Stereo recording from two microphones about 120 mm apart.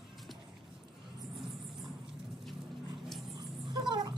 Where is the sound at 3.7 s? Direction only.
40° right (ahead or behind).